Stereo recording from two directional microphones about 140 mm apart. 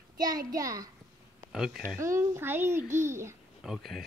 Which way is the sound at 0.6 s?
25° right (ahead or behind).